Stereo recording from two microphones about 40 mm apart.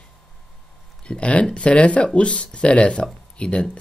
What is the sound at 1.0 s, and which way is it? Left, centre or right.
Speech, left.